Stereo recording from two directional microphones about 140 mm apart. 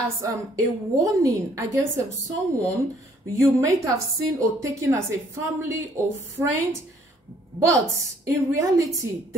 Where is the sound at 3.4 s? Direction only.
20° right (ahead or behind).